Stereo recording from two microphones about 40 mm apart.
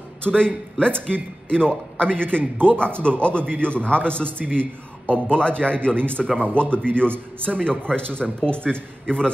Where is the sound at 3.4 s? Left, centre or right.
Right.